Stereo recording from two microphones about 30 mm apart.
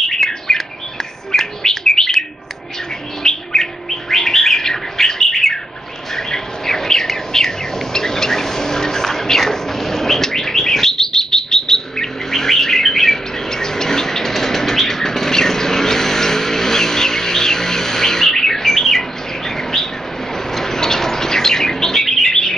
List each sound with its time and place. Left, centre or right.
0.1 s bird: centre
3.3 s bird: left
13.5 s bird flight: centre
20.5 s bird: centre